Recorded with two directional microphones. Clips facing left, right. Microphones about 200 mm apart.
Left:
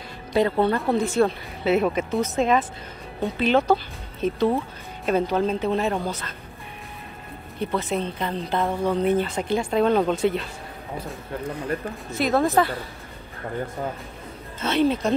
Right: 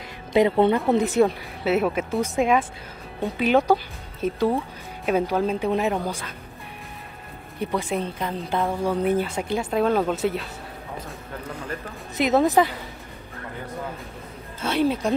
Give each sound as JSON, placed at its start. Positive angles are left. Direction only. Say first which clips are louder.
{"t": 0.3, "sound": "a woman's voice", "louder": "right 2 dB", "side_deg": -20}
{"t": 1.6, "sound": "a woman's voice", "louder": "left 1 dB", "side_deg": -5}
{"t": 3.2, "sound": "speech", "louder": "left 1 dB", "side_deg": 0}
{"t": 3.4, "sound": "a woman's voice", "louder": "right 1 dB", "side_deg": -10}
{"t": 7.7, "sound": "a woman's voice", "louder": "even", "side_deg": -10}
{"t": 12.1, "sound": "a woman's voice", "louder": "right 2 dB", "side_deg": -20}
{"t": 14.6, "sound": "a woman's voice", "louder": "left 1 dB", "side_deg": -10}